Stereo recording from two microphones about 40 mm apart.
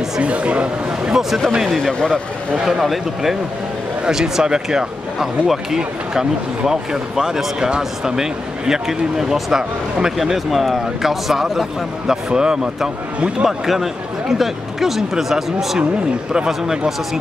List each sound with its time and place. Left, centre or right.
0.2 s speech: right
1.0 s speech: centre
1.6 s speech: centre
2.0 s speech: left
2.6 s speech: centre
4.0 s speech: centre
12.1 s speech: centre
13.5 s speech: centre